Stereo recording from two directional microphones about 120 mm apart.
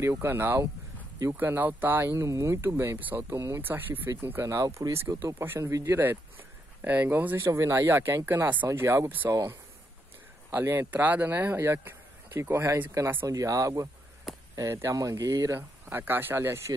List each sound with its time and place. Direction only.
0.0 s speech: 20° right (ahead or behind)
9.3 s speech: 30° right (ahead or behind)
10.5 s speech: 20° right (ahead or behind)